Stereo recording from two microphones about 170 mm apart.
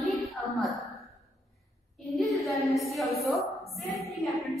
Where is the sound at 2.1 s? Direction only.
Centre (ahead or behind).